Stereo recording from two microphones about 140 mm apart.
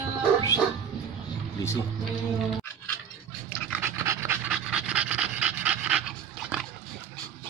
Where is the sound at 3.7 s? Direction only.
15° right (ahead or behind).